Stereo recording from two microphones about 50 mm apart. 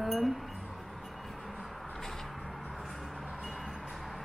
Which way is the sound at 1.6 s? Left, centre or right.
Centre.